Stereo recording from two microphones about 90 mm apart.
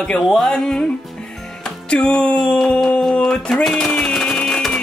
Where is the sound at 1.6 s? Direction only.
10° left (ahead or behind).